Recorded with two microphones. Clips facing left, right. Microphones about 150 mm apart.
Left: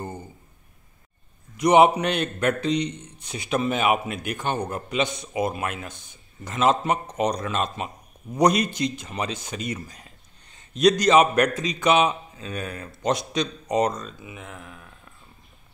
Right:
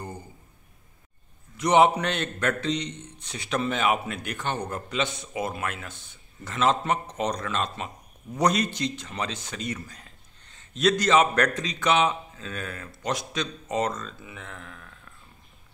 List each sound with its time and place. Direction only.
1.6 s a man's voice: 15° left (ahead or behind)